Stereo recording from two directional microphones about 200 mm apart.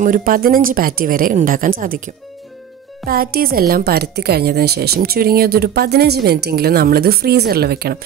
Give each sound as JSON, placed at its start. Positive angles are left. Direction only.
{"t": 0.0, "sound": "a woman's voice", "side_deg": -45}
{"t": 3.1, "sound": "a woman's voice", "side_deg": -50}